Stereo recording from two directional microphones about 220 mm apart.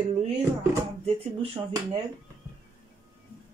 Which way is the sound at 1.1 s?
25° right (ahead or behind).